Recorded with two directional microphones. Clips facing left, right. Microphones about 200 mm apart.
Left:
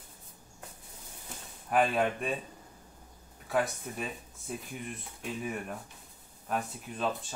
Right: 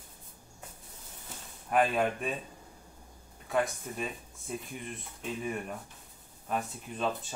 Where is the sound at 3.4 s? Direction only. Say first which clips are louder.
Even; centre (ahead or behind).